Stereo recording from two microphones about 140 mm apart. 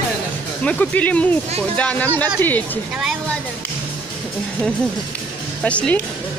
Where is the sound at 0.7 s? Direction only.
10° left (ahead or behind).